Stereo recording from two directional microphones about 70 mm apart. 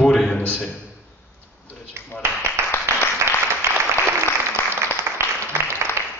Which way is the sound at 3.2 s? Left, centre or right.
Right.